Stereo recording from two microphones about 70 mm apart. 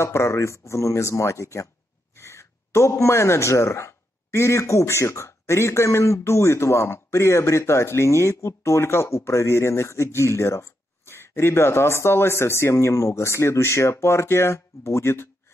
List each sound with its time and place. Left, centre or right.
0.0 s a man's voice: left